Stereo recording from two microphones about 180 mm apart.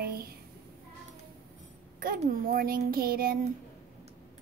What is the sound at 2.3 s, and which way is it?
A child's voice, 50° right (ahead or behind).